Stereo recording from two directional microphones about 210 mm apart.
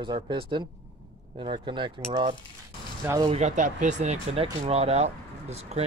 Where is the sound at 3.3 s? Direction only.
35° right (ahead or behind).